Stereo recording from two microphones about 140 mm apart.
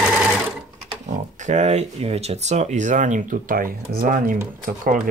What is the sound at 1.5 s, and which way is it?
Speech, 55° right (ahead or behind).